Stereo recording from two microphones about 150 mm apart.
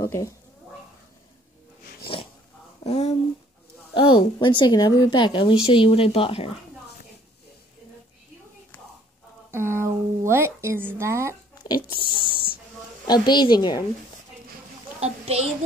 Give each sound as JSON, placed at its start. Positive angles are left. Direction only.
{"t": 0.0, "sound": "a woman's voice", "side_deg": 20}
{"t": 2.8, "sound": "speech", "side_deg": 45}
{"t": 3.9, "sound": "speech", "side_deg": 35}
{"t": 9.5, "sound": "speech", "side_deg": -15}
{"t": 11.6, "sound": "a woman's voice", "side_deg": 30}
{"t": 15.0, "sound": "a child's voice", "side_deg": -45}